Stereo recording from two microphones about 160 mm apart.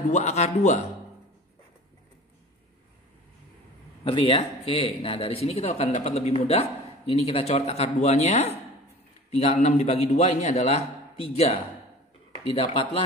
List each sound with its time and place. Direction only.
0.1 s a man's voice: 45° left (ahead or behind)
4.0 s a man's voice: 35° left (ahead or behind)